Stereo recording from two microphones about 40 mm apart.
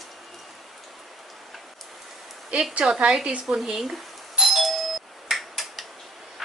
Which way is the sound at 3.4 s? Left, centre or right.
Centre.